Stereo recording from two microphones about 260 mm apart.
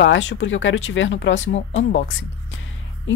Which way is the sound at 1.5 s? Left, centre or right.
Left.